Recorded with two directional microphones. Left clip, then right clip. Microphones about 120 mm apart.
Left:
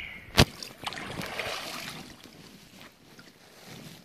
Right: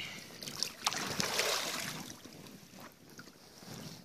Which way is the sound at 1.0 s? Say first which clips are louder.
Even; 40° right (ahead or behind).